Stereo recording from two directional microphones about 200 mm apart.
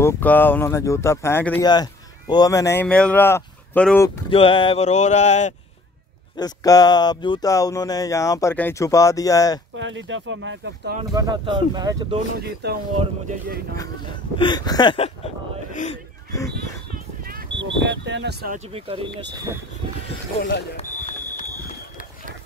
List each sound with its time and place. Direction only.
0.0 s speech: 10° left (ahead or behind)
1.6 s speech: 20° left (ahead or behind)
4.3 s a sound: 25° left (ahead or behind)
6.3 s speech: 20° left (ahead or behind)
9.8 s speech: 70° right (ahead or behind)
11.1 s speech: 20° right (ahead or behind)
12.6 s speech: 55° right (ahead or behind)
14.4 s a sound: 20° left (ahead or behind)
15.7 s speech: 35° left (ahead or behind)
16.9 s a sound: 45° right (ahead or behind)
17.6 s speech: 65° right (ahead or behind)
18.7 s speech: 30° right (ahead or behind)
20.7 s smoke detector: 40° left (ahead or behind)